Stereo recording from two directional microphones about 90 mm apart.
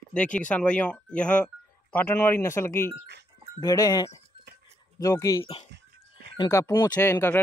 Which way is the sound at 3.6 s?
40° left (ahead or behind).